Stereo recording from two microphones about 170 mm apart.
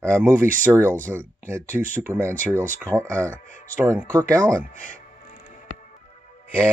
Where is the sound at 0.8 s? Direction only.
10° left (ahead or behind).